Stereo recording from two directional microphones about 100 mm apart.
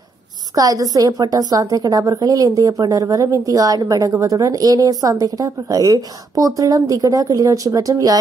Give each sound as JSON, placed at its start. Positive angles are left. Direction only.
{"t": 0.6, "sound": "speech", "side_deg": -40}